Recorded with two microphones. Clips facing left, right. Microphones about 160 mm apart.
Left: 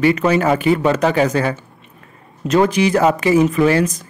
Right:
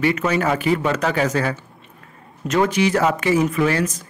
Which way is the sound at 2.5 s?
30° left (ahead or behind).